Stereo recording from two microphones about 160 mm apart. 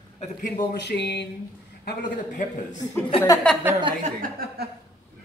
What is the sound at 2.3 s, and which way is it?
Speech, 50° left (ahead or behind).